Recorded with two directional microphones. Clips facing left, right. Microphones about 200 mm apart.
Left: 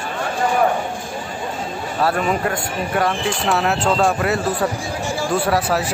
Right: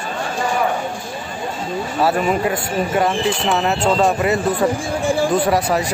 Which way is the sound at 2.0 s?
Centre (ahead or behind).